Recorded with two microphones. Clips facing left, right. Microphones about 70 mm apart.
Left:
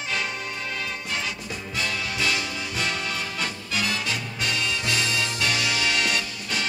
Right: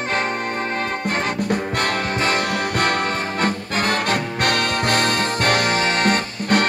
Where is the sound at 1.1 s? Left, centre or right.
Right.